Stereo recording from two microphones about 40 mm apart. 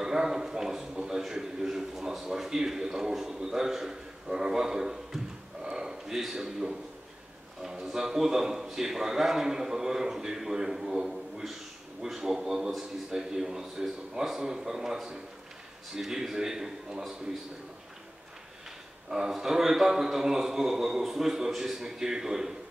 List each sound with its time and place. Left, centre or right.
0.0 s a sound: centre
1.3 s a man's voice: centre
19.0 s a man's voice: centre